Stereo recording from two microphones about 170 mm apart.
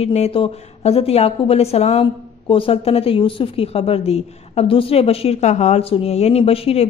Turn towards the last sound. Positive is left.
turn(degrees=35)  # may be behind; listen again after turning